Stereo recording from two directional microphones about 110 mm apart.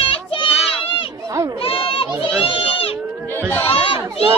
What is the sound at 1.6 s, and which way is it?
Goat, 55° left (ahead or behind).